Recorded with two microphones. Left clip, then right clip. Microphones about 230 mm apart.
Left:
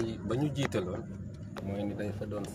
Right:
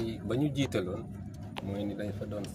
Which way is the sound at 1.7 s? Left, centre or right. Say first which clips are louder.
Left 1 dB; centre.